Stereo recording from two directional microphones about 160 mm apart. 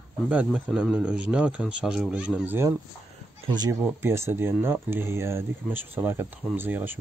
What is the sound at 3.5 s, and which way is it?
Speech, 25° right (ahead or behind).